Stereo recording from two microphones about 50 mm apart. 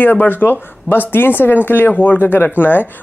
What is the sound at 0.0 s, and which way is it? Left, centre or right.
Speech, left.